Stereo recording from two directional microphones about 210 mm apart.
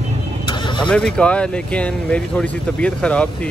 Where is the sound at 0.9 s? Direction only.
5° left (ahead or behind).